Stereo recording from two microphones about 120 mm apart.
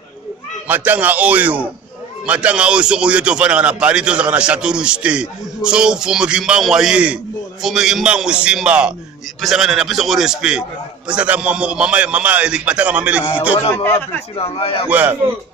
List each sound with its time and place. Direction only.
0.7 s a man's voice: 15° right (ahead or behind)
14.4 s a man's voice: 55° left (ahead or behind)
14.9 s speech: 15° right (ahead or behind)